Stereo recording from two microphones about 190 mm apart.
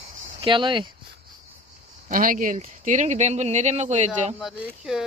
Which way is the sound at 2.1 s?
45° right (ahead or behind).